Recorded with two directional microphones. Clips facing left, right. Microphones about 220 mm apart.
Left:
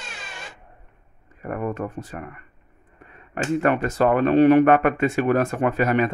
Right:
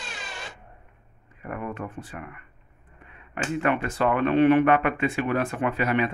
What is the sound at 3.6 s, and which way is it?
Speech, 40° left (ahead or behind).